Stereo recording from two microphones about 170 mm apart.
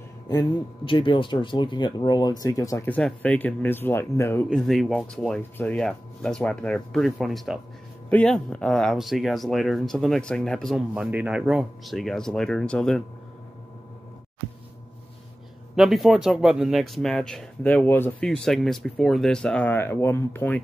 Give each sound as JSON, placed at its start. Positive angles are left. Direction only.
{"t": 0.3, "sound": "speech", "side_deg": 25}
{"t": 15.7, "sound": "speech", "side_deg": 0}